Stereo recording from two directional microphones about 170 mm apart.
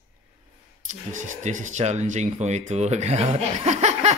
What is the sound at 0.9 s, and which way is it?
Speech, 45° right (ahead or behind).